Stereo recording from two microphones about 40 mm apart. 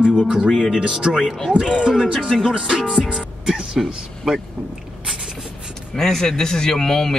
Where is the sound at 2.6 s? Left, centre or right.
Centre.